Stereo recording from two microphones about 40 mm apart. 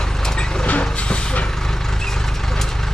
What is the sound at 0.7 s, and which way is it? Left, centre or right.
Vehicle, left.